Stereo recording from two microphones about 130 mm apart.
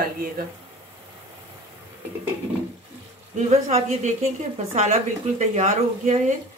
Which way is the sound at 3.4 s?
60° right (ahead or behind).